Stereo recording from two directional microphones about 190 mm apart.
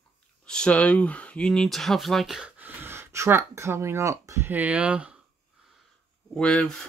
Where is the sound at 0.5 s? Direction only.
5° left (ahead or behind).